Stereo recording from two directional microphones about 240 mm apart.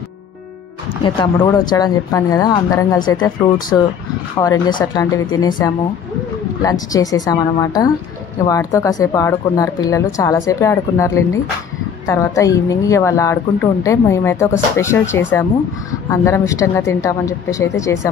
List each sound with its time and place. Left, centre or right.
1.0 s speech: centre
6.6 s speech: centre